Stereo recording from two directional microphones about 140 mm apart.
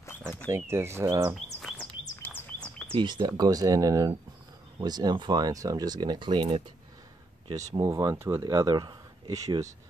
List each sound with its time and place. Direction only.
0.5 s speech: 20° right (ahead or behind)
1.8 s bird: 10° left (ahead or behind)
2.9 s speech: 35° right (ahead or behind)
7.7 s speech: 20° right (ahead or behind)